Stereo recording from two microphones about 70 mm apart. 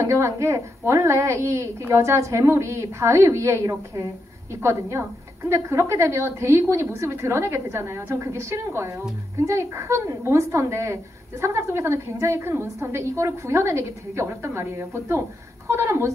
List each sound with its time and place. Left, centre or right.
0.0 s a woman's voice: right